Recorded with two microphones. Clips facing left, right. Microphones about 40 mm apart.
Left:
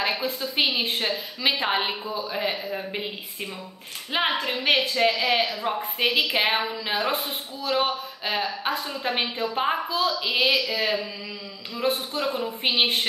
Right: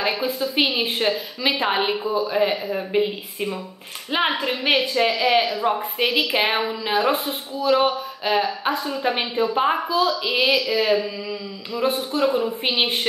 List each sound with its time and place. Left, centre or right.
0.0 s a woman's voice: centre
1.6 s a woman's voice: centre